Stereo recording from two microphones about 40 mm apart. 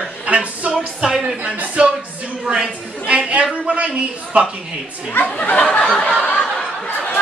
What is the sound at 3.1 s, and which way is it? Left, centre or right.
Speech, right.